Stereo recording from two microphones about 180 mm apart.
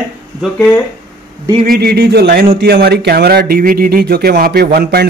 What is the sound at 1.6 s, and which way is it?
Speech, 55° right (ahead or behind).